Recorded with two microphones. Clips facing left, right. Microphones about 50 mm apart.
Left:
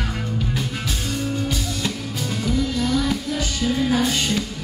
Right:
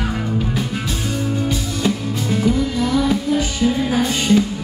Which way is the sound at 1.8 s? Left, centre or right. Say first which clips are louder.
Right 6 dB; centre.